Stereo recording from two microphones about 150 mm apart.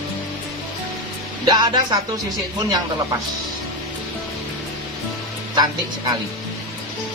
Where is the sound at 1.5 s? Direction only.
30° right (ahead or behind).